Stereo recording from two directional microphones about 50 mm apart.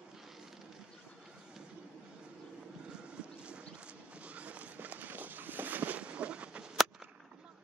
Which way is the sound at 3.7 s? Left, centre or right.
Right.